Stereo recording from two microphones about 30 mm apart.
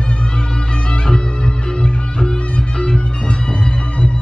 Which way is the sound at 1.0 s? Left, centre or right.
Left.